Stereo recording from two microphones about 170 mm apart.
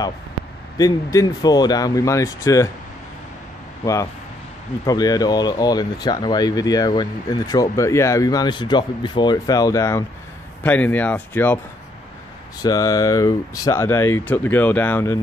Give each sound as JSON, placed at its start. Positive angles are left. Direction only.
{"t": 0.7, "sound": "speech", "side_deg": 20}
{"t": 3.8, "sound": "speech", "side_deg": 20}
{"t": 12.6, "sound": "speech", "side_deg": 20}